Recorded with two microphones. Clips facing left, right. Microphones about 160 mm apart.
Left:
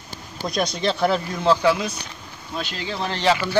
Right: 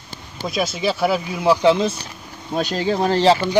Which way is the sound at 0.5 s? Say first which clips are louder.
Right 1 dB; 5° right (ahead or behind).